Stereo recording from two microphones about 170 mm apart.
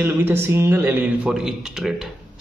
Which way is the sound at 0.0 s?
15° right (ahead or behind).